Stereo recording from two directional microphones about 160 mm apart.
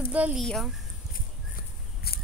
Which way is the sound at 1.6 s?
70° left (ahead or behind).